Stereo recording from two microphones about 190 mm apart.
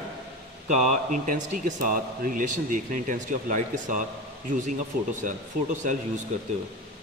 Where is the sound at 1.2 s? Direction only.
45° right (ahead or behind).